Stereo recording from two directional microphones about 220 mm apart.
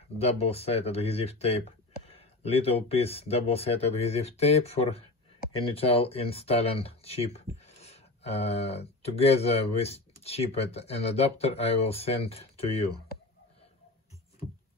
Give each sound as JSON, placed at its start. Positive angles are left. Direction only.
{"t": 0.2, "sound": "speech", "side_deg": 25}